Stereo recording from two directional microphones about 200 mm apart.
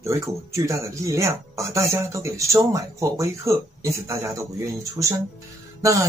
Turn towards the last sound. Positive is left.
turn(degrees=-15)  # may be behind; listen again after turning